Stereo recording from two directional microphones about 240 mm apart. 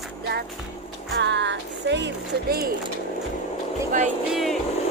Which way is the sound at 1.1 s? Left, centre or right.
Right.